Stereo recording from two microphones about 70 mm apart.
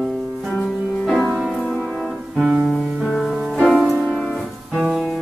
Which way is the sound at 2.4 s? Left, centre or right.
Centre.